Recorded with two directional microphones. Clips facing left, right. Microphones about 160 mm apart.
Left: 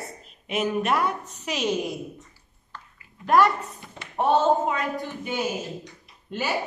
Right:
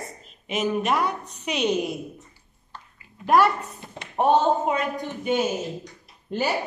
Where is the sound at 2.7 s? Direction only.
10° right (ahead or behind).